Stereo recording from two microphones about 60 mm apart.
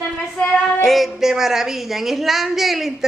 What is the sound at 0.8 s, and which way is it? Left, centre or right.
A woman's voice, centre.